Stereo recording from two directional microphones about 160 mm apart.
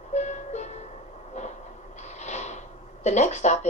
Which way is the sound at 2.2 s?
45° left (ahead or behind).